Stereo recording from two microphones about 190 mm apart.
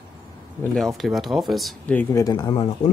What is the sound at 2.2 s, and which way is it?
Speech, 20° left (ahead or behind).